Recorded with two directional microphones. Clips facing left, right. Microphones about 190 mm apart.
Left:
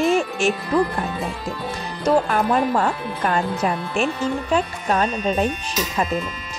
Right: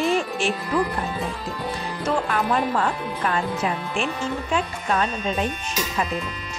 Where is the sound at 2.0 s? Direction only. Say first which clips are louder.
Left 5 dB; 40° left (ahead or behind).